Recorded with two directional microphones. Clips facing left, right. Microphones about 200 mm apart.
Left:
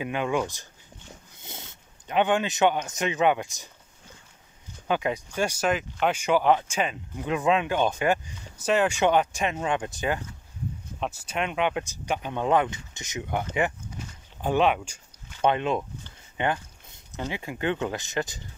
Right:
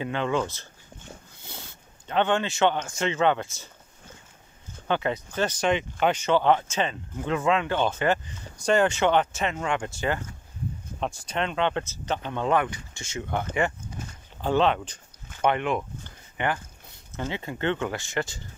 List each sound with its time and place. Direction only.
0.0 s speech: 10° left (ahead or behind)
4.8 s speech: 10° left (ahead or behind)